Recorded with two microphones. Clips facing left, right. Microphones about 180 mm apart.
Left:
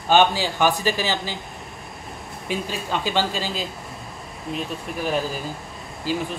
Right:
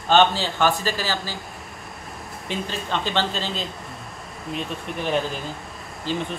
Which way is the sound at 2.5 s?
10° left (ahead or behind).